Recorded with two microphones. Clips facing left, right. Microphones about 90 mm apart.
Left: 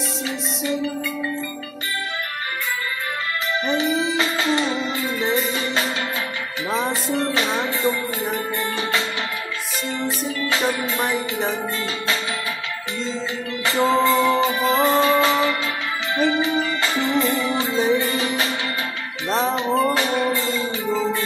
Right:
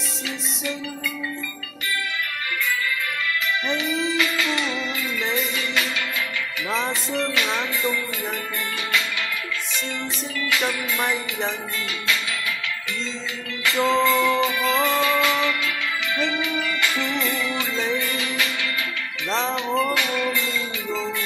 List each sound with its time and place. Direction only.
3.6 s music: 35° left (ahead or behind)
7.1 s music: 30° left (ahead or behind)
10.5 s music: 30° left (ahead or behind)
13.7 s music: 30° left (ahead or behind)
19.5 s music: 35° left (ahead or behind)